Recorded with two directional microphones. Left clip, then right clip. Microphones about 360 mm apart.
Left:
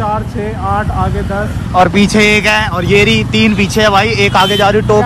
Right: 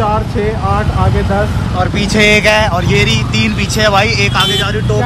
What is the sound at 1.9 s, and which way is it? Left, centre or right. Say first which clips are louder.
Speech: even; centre.